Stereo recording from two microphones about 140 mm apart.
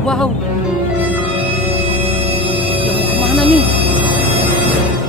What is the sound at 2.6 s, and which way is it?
Scary music, 40° right (ahead or behind).